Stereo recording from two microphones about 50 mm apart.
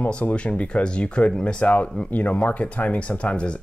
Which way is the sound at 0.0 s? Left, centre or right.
Left.